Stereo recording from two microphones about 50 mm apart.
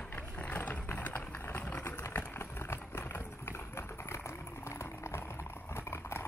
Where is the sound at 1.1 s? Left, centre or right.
Left.